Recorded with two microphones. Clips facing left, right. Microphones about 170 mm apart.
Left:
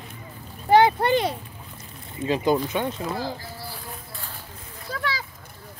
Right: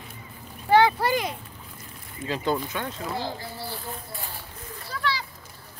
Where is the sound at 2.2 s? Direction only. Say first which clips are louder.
Left 5 dB; 15° left (ahead or behind).